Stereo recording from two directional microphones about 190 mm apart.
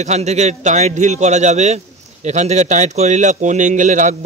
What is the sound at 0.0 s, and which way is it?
Speech, 35° right (ahead or behind).